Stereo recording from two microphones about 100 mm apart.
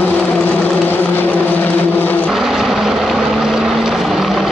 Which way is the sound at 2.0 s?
20° left (ahead or behind).